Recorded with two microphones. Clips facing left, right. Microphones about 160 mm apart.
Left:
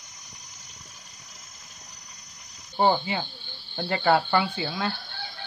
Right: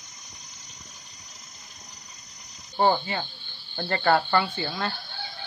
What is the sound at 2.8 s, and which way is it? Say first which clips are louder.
Speech: even; 10° left (ahead or behind).